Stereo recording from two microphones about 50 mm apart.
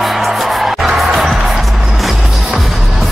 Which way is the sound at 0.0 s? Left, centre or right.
Centre.